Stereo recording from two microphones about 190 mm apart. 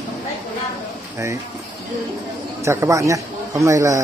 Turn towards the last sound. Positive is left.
turn(degrees=-15)  # may be behind; listen again after turning